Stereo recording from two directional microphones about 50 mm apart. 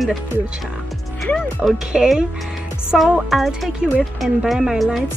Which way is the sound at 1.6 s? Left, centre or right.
Right.